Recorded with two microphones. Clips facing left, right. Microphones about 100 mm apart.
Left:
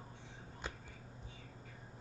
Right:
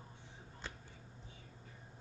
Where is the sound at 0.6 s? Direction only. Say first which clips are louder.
Left 3 dB; 15° left (ahead or behind).